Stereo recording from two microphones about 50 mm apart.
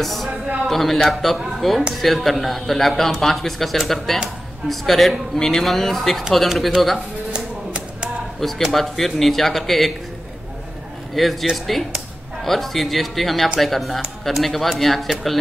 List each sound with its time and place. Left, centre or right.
0.0 s speech: centre
7.3 s a sound: centre
8.4 s speech: centre
11.2 s speech: centre